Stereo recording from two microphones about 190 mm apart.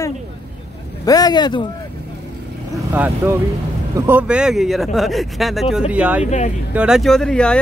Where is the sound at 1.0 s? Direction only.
20° left (ahead or behind).